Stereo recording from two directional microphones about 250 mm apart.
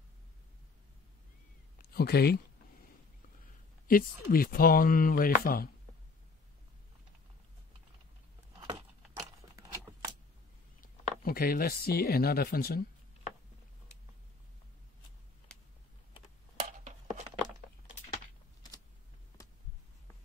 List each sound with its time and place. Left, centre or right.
1.8 s speech: left
3.8 s speech: left
8.5 s keys jangling: centre
10.8 s speech: left
16.5 s chopping: right